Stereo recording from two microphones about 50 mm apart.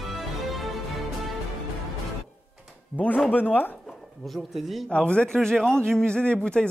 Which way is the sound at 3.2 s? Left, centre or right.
Left.